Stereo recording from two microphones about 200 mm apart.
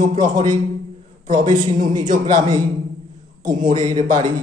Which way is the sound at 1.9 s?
20° right (ahead or behind).